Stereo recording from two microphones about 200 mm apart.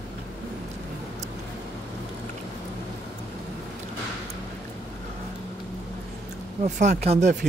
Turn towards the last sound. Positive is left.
turn(degrees=-35)  # may be behind; listen again after turning